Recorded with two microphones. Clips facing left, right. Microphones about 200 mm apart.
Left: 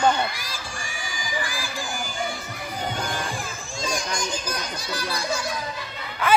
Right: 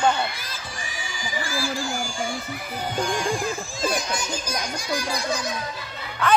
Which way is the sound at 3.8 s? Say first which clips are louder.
Right 2 dB; 5° right (ahead or behind).